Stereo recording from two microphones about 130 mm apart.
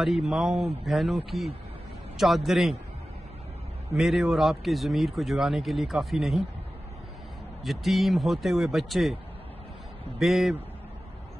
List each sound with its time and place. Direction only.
0.0 s speech: centre (ahead or behind)
3.9 s speech: centre (ahead or behind)
7.6 s speech: centre (ahead or behind)
10.1 s speech: centre (ahead or behind)